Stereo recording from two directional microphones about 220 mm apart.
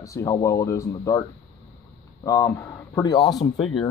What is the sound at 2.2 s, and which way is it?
Speech, 15° left (ahead or behind).